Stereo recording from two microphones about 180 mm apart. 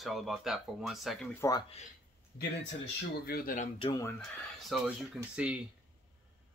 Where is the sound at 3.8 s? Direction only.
30° left (ahead or behind).